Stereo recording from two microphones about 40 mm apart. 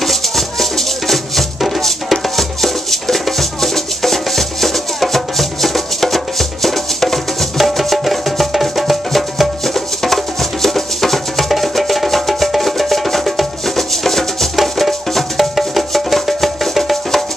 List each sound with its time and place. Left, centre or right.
0.0 s music: centre